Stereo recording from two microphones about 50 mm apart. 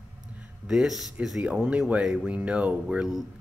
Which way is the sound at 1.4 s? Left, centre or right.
Right.